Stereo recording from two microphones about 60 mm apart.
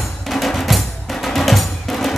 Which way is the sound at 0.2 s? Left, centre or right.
Centre.